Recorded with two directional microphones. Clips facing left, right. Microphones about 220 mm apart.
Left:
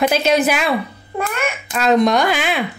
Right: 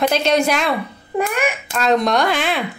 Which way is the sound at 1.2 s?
10° right (ahead or behind).